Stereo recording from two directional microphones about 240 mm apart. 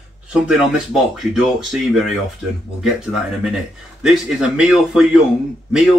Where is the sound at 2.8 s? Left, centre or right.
Centre.